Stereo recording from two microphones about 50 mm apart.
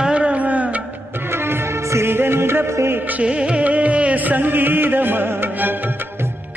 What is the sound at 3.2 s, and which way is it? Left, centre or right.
Music, centre.